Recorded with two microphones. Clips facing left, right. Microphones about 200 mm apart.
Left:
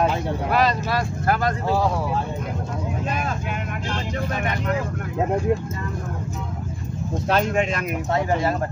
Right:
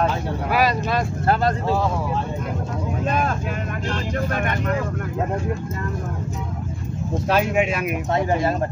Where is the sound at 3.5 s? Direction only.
40° right (ahead or behind).